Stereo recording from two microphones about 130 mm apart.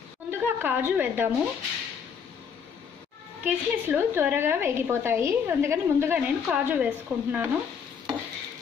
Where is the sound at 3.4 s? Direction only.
15° right (ahead or behind).